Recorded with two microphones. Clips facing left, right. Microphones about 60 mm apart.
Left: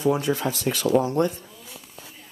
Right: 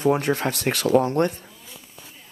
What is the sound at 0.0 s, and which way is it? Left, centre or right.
Speech, right.